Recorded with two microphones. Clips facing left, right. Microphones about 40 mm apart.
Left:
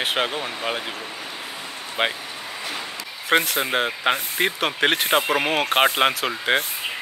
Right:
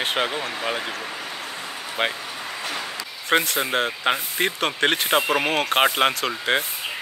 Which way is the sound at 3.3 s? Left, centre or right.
Centre.